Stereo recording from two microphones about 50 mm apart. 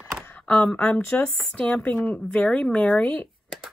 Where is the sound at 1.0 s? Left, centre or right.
Left.